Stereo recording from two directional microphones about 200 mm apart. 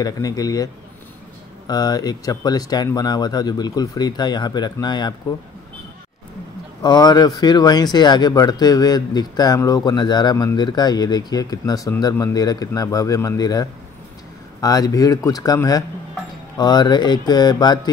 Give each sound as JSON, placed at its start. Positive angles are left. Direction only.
{"t": 0.0, "sound": "speech", "side_deg": 20}
{"t": 1.7, "sound": "speech", "side_deg": 20}
{"t": 6.8, "sound": "speech", "side_deg": 20}